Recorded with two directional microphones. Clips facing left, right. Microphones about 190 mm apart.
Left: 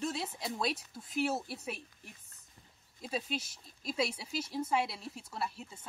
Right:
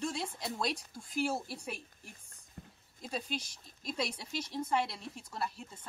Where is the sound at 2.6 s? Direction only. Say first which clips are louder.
Right 12 dB; 60° right (ahead or behind).